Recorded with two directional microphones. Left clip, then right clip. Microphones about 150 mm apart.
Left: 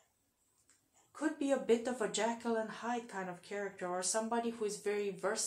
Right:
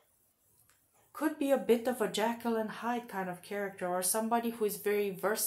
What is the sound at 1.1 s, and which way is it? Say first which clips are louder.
Speech: right 4 dB; 30° right (ahead or behind).